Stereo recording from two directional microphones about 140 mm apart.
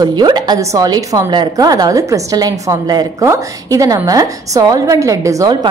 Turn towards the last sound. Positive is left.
turn(degrees=-25)  # may be behind; listen again after turning